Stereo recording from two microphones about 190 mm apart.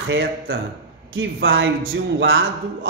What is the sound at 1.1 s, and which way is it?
A man's voice, 90° right.